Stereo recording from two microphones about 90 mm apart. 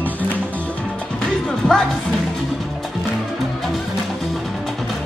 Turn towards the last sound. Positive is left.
turn(degrees=0)  # may be behind; listen again after turning